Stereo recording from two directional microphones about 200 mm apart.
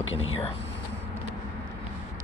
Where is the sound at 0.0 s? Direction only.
75° left (ahead or behind).